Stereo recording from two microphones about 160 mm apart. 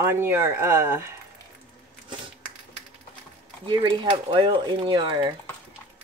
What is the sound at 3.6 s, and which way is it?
Speech, 30° right (ahead or behind).